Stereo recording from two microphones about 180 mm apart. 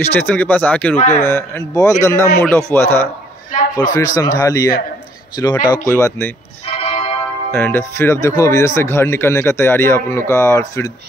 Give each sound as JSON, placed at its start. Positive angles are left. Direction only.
{"t": 0.1, "sound": "speech", "side_deg": 10}
{"t": 3.5, "sound": "a man's voice", "side_deg": 45}
{"t": 3.9, "sound": "speech", "side_deg": 20}
{"t": 6.8, "sound": "music", "side_deg": 30}
{"t": 7.5, "sound": "speech", "side_deg": 10}